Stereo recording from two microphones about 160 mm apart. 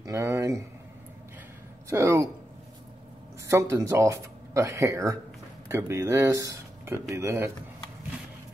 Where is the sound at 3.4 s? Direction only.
20° right (ahead or behind).